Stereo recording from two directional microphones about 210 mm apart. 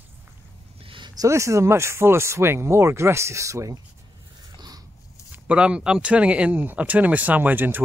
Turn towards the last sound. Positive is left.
turn(degrees=-10)  # may be behind; listen again after turning